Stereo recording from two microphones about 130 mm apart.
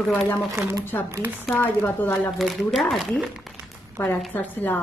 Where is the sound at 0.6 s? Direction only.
20° right (ahead or behind).